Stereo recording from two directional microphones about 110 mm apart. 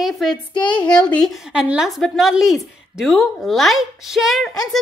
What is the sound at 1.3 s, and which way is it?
A woman's voice, 5° right (ahead or behind).